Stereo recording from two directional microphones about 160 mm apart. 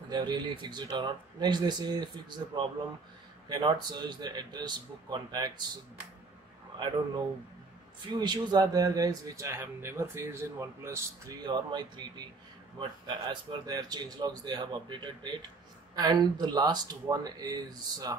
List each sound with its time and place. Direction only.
0.1 s speech: 30° right (ahead or behind)
8.1 s speech: 25° right (ahead or behind)
11.4 s speech: 25° right (ahead or behind)